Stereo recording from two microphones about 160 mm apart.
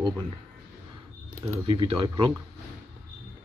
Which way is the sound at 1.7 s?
35° right (ahead or behind).